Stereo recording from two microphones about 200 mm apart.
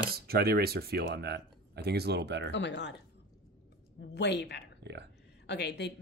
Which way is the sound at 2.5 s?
60° left (ahead or behind).